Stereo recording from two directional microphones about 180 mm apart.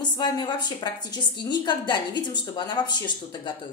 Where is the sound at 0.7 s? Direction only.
25° left (ahead or behind).